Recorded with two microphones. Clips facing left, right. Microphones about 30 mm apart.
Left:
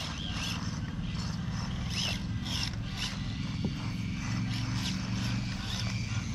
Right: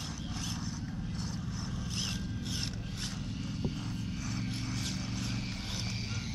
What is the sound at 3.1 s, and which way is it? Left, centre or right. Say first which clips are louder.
Zipper: left 2 dB; left.